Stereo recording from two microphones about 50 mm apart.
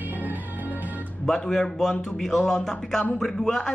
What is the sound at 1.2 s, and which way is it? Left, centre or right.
A man's voice, centre.